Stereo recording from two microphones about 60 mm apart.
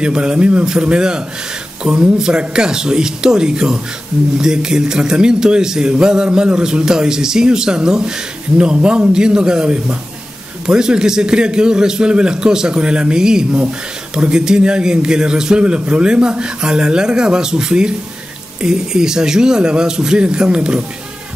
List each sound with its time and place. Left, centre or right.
0.0 s speech: centre